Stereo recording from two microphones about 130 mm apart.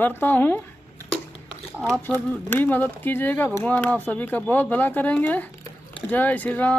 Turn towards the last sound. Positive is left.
turn(degrees=10)  # may be behind; listen again after turning